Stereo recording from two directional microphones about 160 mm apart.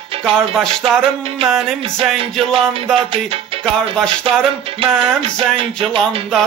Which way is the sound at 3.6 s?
5° left (ahead or behind).